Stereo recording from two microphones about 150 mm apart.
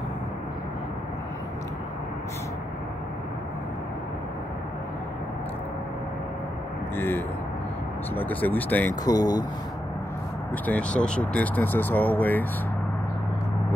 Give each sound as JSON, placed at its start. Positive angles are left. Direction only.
{"t": 7.0, "sound": "speech", "side_deg": 15}
{"t": 9.0, "sound": "speech", "side_deg": 25}
{"t": 10.5, "sound": "speech", "side_deg": 10}